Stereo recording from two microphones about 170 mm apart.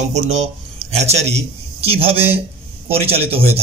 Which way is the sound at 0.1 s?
40° right (ahead or behind).